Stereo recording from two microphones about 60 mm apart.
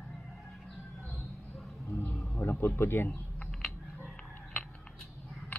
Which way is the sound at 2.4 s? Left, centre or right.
Left.